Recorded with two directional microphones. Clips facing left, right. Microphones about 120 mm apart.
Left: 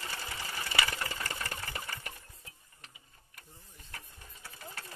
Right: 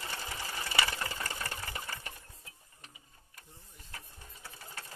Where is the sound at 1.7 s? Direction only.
10° right (ahead or behind).